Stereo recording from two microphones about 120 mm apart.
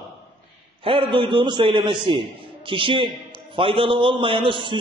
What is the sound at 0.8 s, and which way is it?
A man's voice, 50° right (ahead or behind).